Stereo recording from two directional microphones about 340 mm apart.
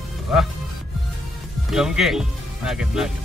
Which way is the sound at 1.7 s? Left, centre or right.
Centre.